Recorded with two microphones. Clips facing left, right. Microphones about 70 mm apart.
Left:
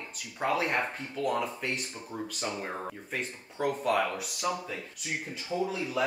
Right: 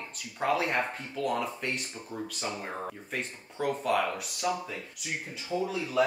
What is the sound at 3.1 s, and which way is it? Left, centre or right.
Speech, centre.